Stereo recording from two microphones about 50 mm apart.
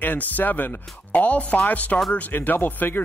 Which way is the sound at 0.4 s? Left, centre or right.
Left.